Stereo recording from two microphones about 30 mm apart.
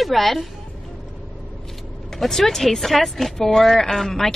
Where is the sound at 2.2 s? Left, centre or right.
Centre.